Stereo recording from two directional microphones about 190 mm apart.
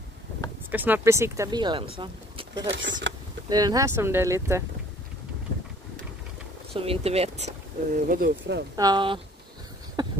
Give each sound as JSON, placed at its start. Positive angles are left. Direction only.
{"t": 0.7, "sound": "speech", "side_deg": -10}
{"t": 2.7, "sound": "speech", "side_deg": -75}
{"t": 3.4, "sound": "speech", "side_deg": -20}
{"t": 6.7, "sound": "speech", "side_deg": -30}
{"t": 8.7, "sound": "speech", "side_deg": -20}
{"t": 10.0, "sound": "a sound", "side_deg": -20}